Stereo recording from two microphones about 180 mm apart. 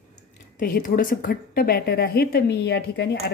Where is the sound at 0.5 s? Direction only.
50° left (ahead or behind).